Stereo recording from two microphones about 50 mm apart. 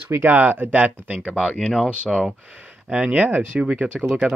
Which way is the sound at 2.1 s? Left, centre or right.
Centre.